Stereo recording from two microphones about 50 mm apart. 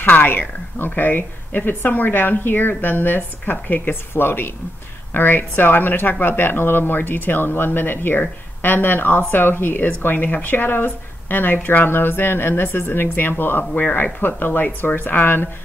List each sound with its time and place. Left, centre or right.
0.0 s speech: left
9.8 s speech: left